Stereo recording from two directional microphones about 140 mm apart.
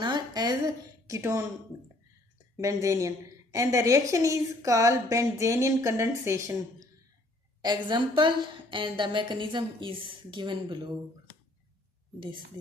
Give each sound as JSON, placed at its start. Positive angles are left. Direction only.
{"t": 0.0, "sound": "a sound", "side_deg": -30}
{"t": 1.0, "sound": "a woman's voice", "side_deg": -20}
{"t": 2.5, "sound": "a woman's voice", "side_deg": -20}
{"t": 7.6, "sound": "a woman's voice", "side_deg": -30}